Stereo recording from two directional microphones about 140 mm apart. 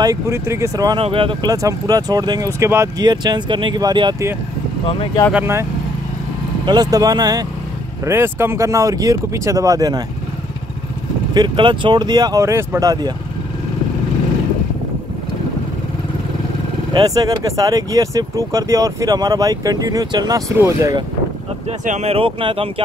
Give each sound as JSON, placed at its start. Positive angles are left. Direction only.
{"t": 0.0, "sound": "speech", "side_deg": -25}
{"t": 0.9, "sound": "speech", "side_deg": -40}
{"t": 1.5, "sound": "speech", "side_deg": -25}
{"t": 4.8, "sound": "speech", "side_deg": 40}
{"t": 5.3, "sound": "speech", "side_deg": -15}
{"t": 6.6, "sound": "speech", "side_deg": -30}
{"t": 11.3, "sound": "speech", "side_deg": -35}
{"t": 16.9, "sound": "speech", "side_deg": -25}
{"t": 21.6, "sound": "speech", "side_deg": -55}